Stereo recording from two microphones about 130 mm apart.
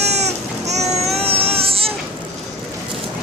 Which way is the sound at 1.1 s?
50° right (ahead or behind).